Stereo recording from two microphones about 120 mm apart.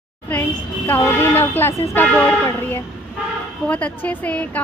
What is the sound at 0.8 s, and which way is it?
A woman's voice, 20° left (ahead or behind).